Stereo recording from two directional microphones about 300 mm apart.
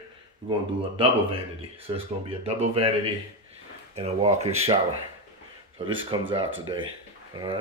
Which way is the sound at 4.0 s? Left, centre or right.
Right.